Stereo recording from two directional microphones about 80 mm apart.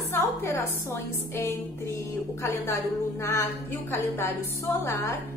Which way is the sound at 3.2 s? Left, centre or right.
Left.